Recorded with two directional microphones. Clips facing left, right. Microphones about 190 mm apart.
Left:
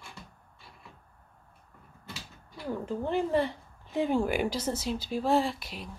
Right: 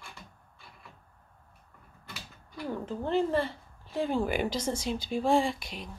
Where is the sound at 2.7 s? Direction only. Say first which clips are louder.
Even; 10° left (ahead or behind).